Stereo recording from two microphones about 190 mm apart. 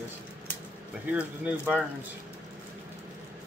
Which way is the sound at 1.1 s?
5° right (ahead or behind).